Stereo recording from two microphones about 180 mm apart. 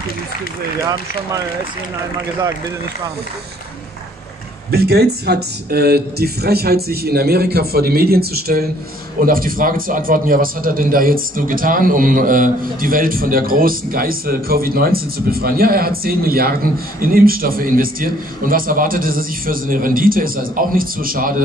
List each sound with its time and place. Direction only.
4.6 s a man's voice: 60° right (ahead or behind)